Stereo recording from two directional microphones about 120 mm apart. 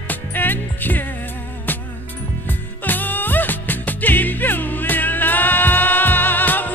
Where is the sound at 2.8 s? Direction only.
15° left (ahead or behind).